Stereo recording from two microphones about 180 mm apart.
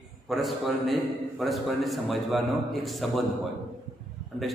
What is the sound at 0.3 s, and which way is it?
A man's voice, centre (ahead or behind).